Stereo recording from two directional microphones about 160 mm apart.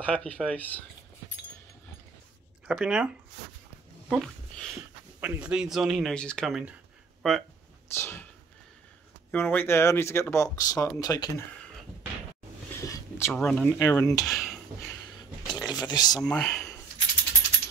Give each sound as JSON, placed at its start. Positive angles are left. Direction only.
{"t": 0.0, "sound": "speech", "side_deg": 5}
{"t": 2.6, "sound": "speech", "side_deg": -5}
{"t": 4.1, "sound": "speech", "side_deg": 0}
{"t": 7.9, "sound": "speech", "side_deg": 15}
{"t": 9.3, "sound": "speech", "side_deg": 10}
{"t": 12.8, "sound": "a sound", "side_deg": 20}
{"t": 13.3, "sound": "speech", "side_deg": 10}
{"t": 14.2, "sound": "a sound", "side_deg": 0}
{"t": 14.9, "sound": "a sound", "side_deg": 25}
{"t": 16.2, "sound": "speech", "side_deg": 5}